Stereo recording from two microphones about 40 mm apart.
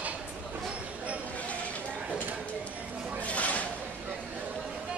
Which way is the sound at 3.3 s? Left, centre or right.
Left.